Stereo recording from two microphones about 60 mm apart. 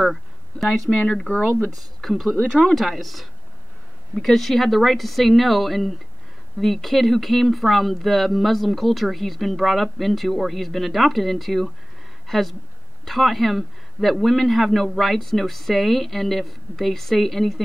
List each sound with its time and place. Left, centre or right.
0.0 s speech: centre
1.0 s speech: centre
1.8 s speech: centre